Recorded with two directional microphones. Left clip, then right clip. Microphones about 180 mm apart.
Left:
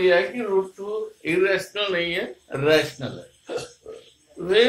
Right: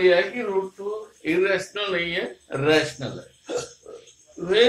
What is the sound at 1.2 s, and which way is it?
Speech, 25° left (ahead or behind).